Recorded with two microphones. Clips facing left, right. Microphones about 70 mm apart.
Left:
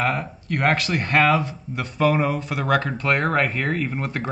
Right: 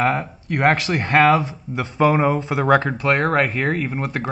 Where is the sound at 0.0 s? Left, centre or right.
Centre.